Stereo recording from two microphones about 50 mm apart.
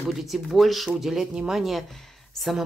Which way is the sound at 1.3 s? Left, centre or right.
Centre.